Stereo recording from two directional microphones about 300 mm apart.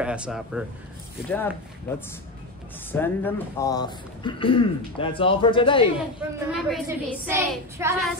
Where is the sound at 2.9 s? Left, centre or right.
Centre.